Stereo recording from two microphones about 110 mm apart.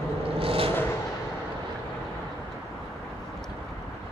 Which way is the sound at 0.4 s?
60° right (ahead or behind).